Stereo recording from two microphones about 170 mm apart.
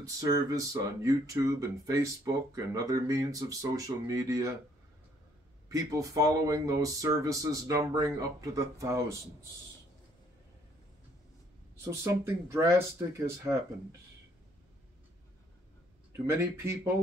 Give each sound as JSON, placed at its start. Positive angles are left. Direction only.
{"t": 0.0, "sound": "speech", "side_deg": -20}
{"t": 5.7, "sound": "speech", "side_deg": -20}
{"t": 12.0, "sound": "speech", "side_deg": -15}
{"t": 16.3, "sound": "speech", "side_deg": -15}